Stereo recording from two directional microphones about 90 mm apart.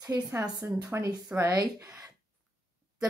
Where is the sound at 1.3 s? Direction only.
35° right (ahead or behind).